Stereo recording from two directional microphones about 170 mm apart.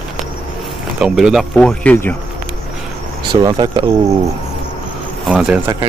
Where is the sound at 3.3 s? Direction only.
30° right (ahead or behind).